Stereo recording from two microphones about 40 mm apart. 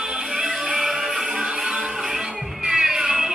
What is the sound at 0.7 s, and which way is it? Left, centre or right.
Music, centre.